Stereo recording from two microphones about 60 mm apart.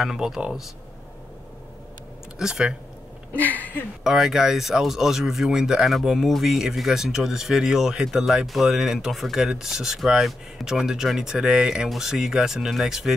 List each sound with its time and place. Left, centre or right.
0.0 s speech: centre
2.3 s speech: centre
3.3 s a sound: left
4.0 s speech: centre